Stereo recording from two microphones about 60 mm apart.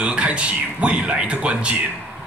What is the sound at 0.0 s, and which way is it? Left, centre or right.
Speech, centre.